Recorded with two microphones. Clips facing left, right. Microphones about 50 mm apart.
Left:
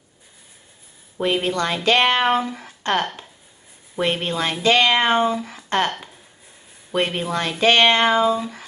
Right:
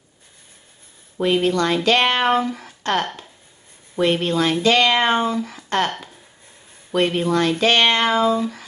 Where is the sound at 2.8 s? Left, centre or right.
Left.